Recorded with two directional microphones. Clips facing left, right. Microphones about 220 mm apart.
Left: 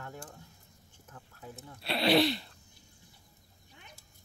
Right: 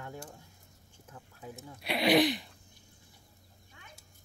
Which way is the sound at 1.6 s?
15° right (ahead or behind).